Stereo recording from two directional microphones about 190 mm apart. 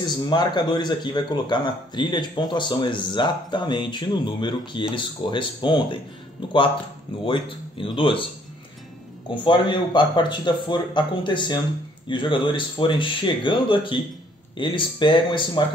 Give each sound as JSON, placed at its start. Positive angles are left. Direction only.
{"t": 0.1, "sound": "a man's voice", "side_deg": 25}
{"t": 9.3, "sound": "a man's voice", "side_deg": 25}